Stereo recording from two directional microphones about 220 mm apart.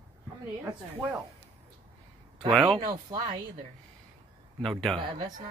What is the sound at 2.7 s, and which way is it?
Speech, 20° right (ahead or behind).